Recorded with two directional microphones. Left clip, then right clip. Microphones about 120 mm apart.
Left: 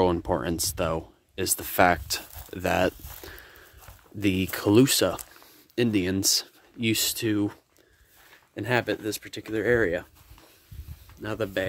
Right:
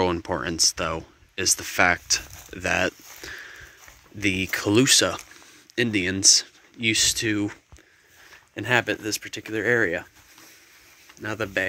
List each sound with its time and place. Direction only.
0.0 s speech: 30° left (ahead or behind)
3.2 s sniff: 30° left (ahead or behind)
4.2 s speech: 50° left (ahead or behind)
7.2 s speech: 20° left (ahead or behind)
8.5 s speech: 5° left (ahead or behind)
11.2 s speech: 10° left (ahead or behind)